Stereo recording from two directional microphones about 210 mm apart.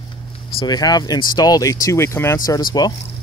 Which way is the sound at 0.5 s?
20° left (ahead or behind).